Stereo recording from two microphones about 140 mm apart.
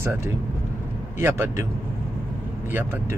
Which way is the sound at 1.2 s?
20° right (ahead or behind).